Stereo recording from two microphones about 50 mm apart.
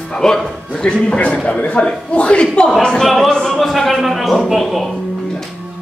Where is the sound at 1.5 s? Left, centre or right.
Left; by 5.5 s centre.